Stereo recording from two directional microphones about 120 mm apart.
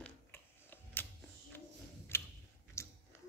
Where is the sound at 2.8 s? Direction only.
25° left (ahead or behind).